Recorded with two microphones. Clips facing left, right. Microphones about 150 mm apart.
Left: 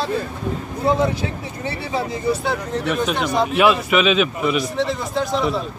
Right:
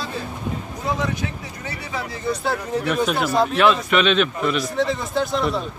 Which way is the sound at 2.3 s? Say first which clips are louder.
Right 1 dB; centre (ahead or behind).